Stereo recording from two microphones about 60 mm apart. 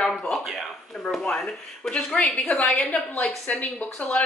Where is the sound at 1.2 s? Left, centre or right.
Centre.